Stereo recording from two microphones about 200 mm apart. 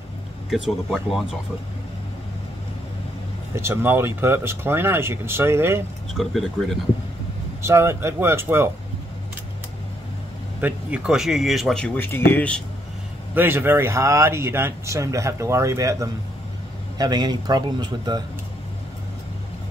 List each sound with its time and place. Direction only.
0.5 s speech: centre (ahead or behind)
3.5 s speech: 10° right (ahead or behind)
6.1 s speech: centre (ahead or behind)
7.6 s speech: 15° right (ahead or behind)
10.6 s speech: 5° right (ahead or behind)
13.3 s speech: 10° right (ahead or behind)